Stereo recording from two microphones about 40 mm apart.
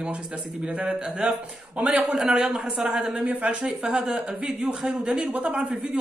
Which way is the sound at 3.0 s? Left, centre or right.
Right.